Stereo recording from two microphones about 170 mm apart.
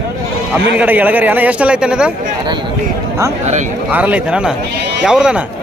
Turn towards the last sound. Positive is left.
turn(degrees=-5)  # may be behind; listen again after turning